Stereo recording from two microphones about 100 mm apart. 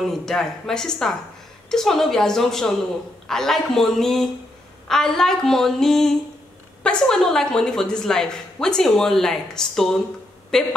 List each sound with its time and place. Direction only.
0.0 s speech: 5° left (ahead or behind)